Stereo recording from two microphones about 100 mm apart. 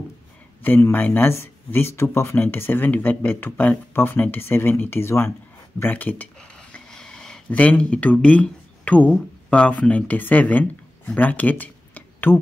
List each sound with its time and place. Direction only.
0.7 s speech: 20° left (ahead or behind)
6.7 s a sound: 10° left (ahead or behind)
9.5 s speech: 15° left (ahead or behind)